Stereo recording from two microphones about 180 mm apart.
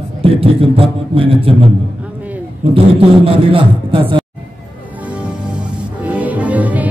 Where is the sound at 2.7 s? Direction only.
30° right (ahead or behind).